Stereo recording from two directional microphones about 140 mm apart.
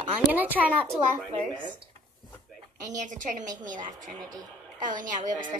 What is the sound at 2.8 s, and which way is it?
A woman's voice, 65° right (ahead or behind).